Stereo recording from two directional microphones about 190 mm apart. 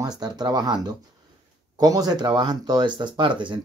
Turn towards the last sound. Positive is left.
turn(degrees=-25)  # may be behind; listen again after turning